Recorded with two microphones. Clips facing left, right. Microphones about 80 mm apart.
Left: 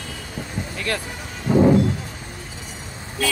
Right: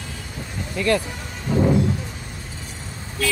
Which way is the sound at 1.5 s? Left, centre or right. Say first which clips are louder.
Left 4 dB; centre.